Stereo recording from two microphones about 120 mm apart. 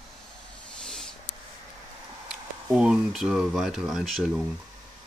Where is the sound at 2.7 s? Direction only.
5° right (ahead or behind).